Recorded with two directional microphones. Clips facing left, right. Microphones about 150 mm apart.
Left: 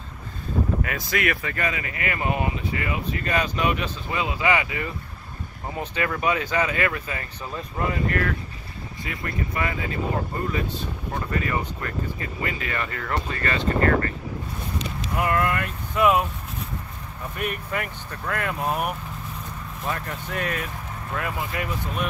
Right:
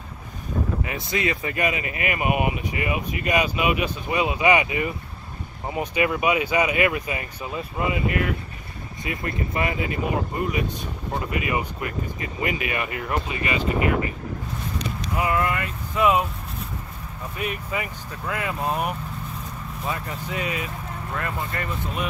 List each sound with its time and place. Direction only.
0.8 s speech: 20° right (ahead or behind)
9.0 s speech: 20° right (ahead or behind); by 16.3 s centre (ahead or behind)
17.4 s speech: 5° right (ahead or behind)